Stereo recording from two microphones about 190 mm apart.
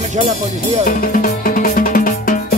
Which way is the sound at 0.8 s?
45° left (ahead or behind).